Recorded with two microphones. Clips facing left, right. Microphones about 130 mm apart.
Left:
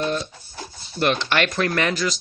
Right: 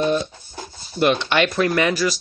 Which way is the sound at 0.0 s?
20° right (ahead or behind).